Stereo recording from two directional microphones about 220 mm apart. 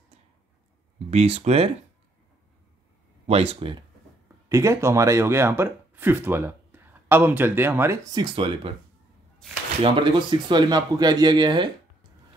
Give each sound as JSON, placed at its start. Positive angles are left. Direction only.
{"t": 1.1, "sound": "speech", "side_deg": -30}
{"t": 3.3, "sound": "speech", "side_deg": -25}
{"t": 4.5, "sound": "speech", "side_deg": -15}
{"t": 9.9, "sound": "speech", "side_deg": -20}